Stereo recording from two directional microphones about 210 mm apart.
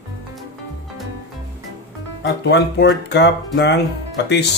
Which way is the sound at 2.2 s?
55° left (ahead or behind).